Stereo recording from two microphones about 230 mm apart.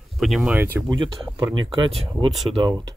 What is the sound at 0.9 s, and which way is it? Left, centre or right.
Speech, centre.